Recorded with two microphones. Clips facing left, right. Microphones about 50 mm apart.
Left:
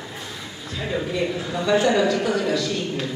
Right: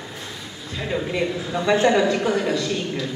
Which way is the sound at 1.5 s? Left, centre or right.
Right.